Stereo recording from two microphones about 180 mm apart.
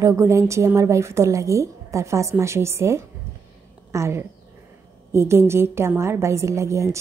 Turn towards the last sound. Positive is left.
turn(degrees=-15)  # may be behind; listen again after turning